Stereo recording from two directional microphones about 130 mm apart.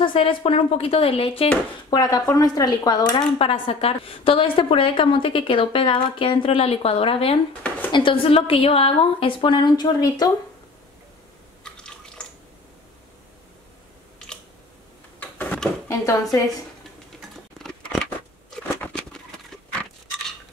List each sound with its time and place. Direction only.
0.0 s a woman's voice: 40° left (ahead or behind)
1.9 s speech: 30° left (ahead or behind)
3.3 s a woman's voice: 45° left (ahead or behind); by 10.3 s 30° left (ahead or behind)
11.6 s water: 5° left (ahead or behind)
15.1 s a sound: 10° left (ahead or behind)
15.9 s speech: 25° left (ahead or behind)
17.6 s a sound: 5° left (ahead or behind)